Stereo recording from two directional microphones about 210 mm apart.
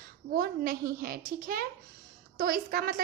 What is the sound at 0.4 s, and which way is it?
A woman's voice, 45° right (ahead or behind).